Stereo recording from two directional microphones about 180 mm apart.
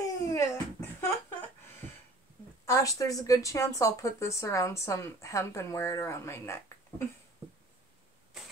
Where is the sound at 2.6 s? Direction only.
15° left (ahead or behind).